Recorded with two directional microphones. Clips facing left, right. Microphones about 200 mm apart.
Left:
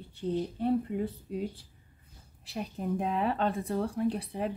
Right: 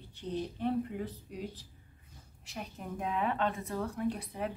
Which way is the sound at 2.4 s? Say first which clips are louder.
Left 7 dB; 35° left (ahead or behind).